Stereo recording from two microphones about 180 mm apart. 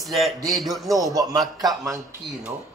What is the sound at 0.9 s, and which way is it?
Speech, 20° right (ahead or behind).